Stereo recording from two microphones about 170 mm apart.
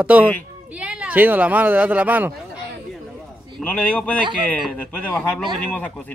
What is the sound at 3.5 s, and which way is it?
Speech, 10° left (ahead or behind).